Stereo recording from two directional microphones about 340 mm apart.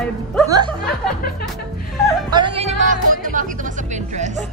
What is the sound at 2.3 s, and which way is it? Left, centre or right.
Speech, centre.